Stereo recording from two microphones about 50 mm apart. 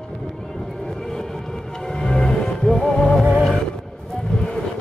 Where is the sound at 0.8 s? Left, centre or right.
Centre.